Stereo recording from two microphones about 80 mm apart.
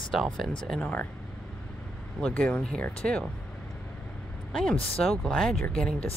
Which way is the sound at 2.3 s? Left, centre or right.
Centre.